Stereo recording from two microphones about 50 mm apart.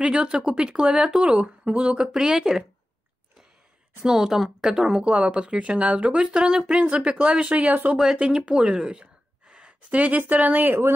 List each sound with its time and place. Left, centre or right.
0.0 s speech: centre
2.1 s speech: centre
4.0 s speech: centre; by 7.9 s right
7.9 s speech: centre
9.0 s a sound: centre
10.3 s speech: right